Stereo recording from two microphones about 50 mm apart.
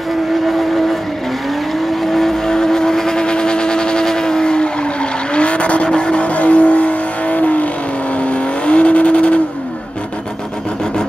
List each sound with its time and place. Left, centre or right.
0.5 s vehicle: centre
2.0 s vehicle: centre; by 9.4 s left